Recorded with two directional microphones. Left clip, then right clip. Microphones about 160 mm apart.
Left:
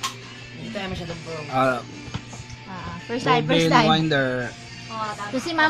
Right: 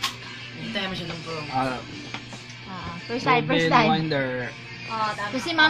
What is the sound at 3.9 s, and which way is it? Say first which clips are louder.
Speech: left 3 dB; 50° left (ahead or behind).